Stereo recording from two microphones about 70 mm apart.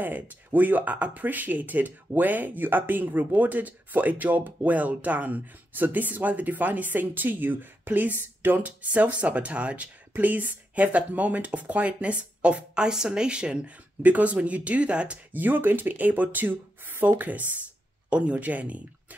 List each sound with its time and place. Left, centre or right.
0.0 s speech: right